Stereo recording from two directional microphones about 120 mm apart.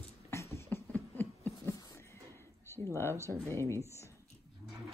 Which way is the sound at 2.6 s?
20° left (ahead or behind).